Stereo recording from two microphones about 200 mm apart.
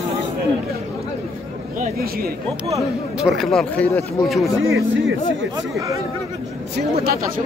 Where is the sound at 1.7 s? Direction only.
50° right (ahead or behind).